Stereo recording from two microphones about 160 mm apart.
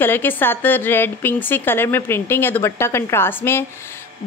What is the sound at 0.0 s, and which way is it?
A woman's voice, 10° left (ahead or behind).